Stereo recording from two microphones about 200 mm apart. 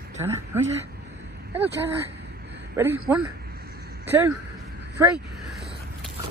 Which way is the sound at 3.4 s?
50° right (ahead or behind).